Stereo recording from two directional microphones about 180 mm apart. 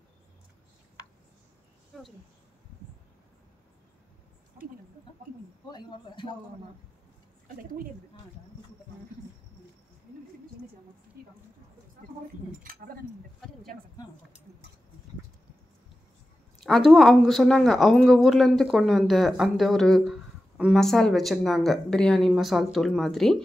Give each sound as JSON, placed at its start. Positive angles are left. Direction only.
{"t": 5.7, "sound": "a man's voice", "side_deg": 25}
{"t": 12.8, "sound": "speech", "side_deg": -55}
{"t": 16.6, "sound": "speech", "side_deg": 0}